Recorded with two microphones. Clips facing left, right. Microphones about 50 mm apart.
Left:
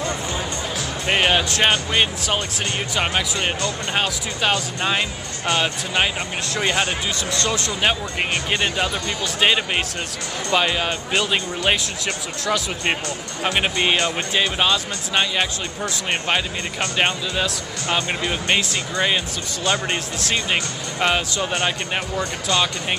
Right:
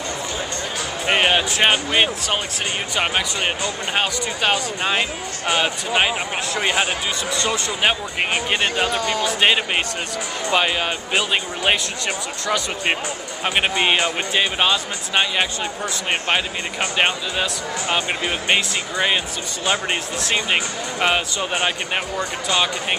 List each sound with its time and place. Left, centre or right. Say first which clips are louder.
1.0 s speech: right 1 dB; centre